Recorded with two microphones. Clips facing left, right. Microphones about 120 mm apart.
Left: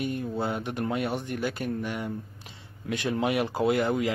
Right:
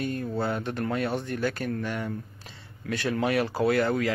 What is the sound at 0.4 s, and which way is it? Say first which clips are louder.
Speech: right 2 dB; 15° left (ahead or behind).